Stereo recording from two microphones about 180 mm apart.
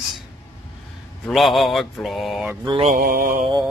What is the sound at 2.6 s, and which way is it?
Mantra, 30° right (ahead or behind).